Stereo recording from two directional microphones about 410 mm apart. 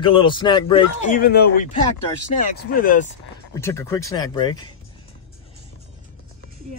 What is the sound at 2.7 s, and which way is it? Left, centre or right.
Speech, centre.